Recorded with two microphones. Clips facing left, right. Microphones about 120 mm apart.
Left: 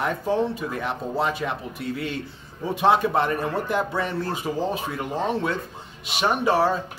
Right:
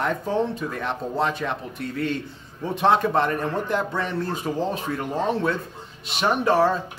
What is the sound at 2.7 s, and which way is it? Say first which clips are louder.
Speech: even; 5° left (ahead or behind).